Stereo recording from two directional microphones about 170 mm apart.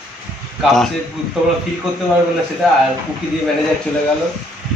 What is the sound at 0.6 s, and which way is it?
Speech, centre (ahead or behind).